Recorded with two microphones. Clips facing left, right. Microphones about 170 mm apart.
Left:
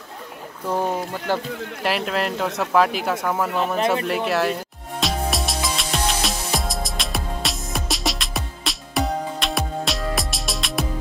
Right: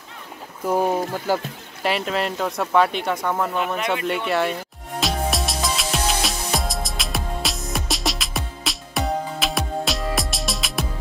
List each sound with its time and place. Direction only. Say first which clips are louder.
0.7 s speech: right 3 dB; 15° right (ahead or behind); by 3.5 s 5° left (ahead or behind)
3.6 s speech: left 3 dB; 30° left (ahead or behind)
4.1 s speech: left 1 dB; centre (ahead or behind)
5.0 s music: even; centre (ahead or behind)